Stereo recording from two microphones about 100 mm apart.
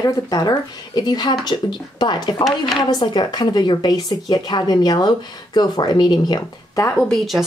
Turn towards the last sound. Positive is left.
turn(degrees=0)  # may be behind; listen again after turning